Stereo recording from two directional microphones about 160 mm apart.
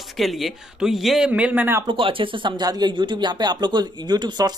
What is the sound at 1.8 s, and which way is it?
Speech, 35° right (ahead or behind).